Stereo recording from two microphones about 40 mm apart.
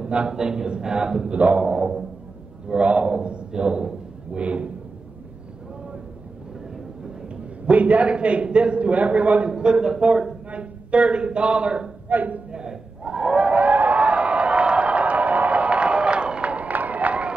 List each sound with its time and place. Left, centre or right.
0.0 s a sound: right
0.3 s a man's voice: centre
1.3 s a man's voice: right
2.7 s a man's voice: right
7.6 s a man's voice: right
9.5 s a man's voice: right
12.1 s speech: right
12.4 s a sound: centre; by 17.3 s right